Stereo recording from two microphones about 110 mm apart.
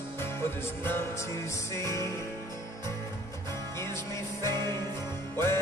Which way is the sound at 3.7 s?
25° left (ahead or behind).